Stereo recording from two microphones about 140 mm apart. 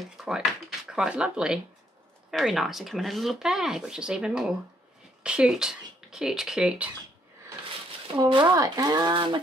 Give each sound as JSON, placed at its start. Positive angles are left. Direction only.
{"t": 0.2, "sound": "a sound", "side_deg": -5}
{"t": 0.8, "sound": "speech", "side_deg": -5}
{"t": 8.2, "sound": "speech", "side_deg": -30}